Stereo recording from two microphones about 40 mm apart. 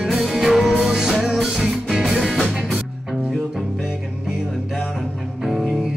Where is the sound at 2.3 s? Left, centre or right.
Centre.